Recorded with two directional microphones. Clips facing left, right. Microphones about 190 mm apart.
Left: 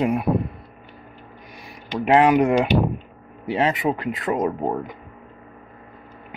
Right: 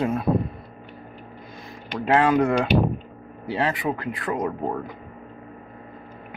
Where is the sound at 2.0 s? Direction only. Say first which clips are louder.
Left 3 dB; 15° left (ahead or behind).